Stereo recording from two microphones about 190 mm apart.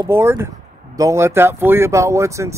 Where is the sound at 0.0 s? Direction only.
10° right (ahead or behind).